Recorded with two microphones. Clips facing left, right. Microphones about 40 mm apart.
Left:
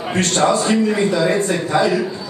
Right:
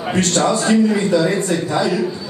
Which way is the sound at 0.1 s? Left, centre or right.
Left.